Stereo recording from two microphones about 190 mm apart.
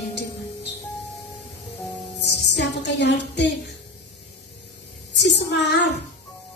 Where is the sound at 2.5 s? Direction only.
65° left (ahead or behind).